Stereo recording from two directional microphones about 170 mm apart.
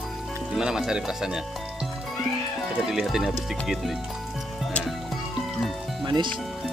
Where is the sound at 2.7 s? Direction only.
Centre (ahead or behind).